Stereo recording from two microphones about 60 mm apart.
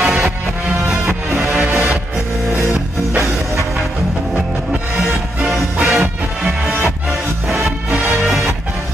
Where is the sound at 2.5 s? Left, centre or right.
Right.